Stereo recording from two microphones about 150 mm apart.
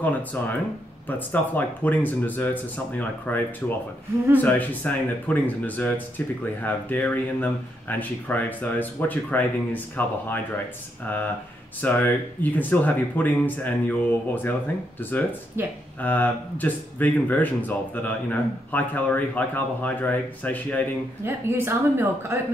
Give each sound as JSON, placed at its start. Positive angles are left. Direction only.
{"t": 0.0, "sound": "speech", "side_deg": 10}
{"t": 15.6, "sound": "speech", "side_deg": -15}
{"t": 16.0, "sound": "speech", "side_deg": 10}
{"t": 21.3, "sound": "speech", "side_deg": -15}